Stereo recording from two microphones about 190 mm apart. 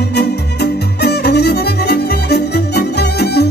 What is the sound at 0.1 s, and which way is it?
Music, 60° left (ahead or behind).